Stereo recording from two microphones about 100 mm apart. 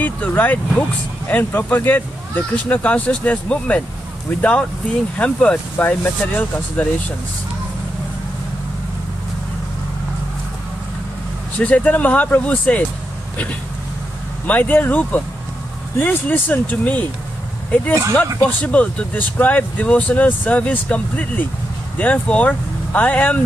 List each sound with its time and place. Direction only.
0.0 s speech: 15° left (ahead or behind)
11.6 s speech: 15° left (ahead or behind)
14.5 s speech: 15° left (ahead or behind)
18.1 s speech: 15° left (ahead or behind)